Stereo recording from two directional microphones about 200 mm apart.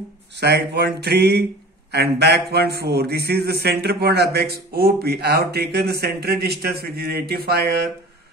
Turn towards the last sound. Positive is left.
turn(degrees=-50)  # may be behind; listen again after turning